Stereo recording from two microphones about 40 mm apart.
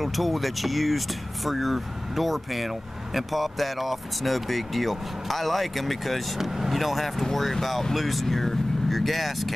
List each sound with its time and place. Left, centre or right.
0.0 s speech: centre